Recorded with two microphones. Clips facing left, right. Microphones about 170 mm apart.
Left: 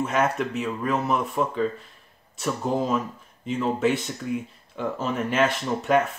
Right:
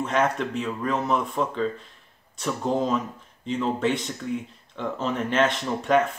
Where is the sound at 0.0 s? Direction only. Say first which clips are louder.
Even; 5° left (ahead or behind).